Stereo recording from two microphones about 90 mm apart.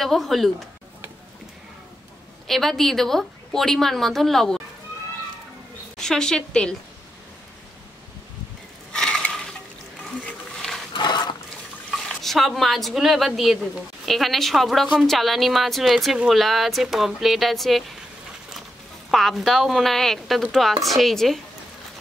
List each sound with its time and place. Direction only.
0.0 s a woman's voice: centre (ahead or behind)
2.4 s a woman's voice: 5° left (ahead or behind)
5.9 s a woman's voice: 5° left (ahead or behind)
8.9 s a sound: 10° left (ahead or behind)
10.2 s wild animals: 5° left (ahead or behind)
10.9 s a sound: 55° left (ahead or behind)
11.9 s a woman's voice: 5° left (ahead or behind)
19.0 s a woman's voice: centre (ahead or behind)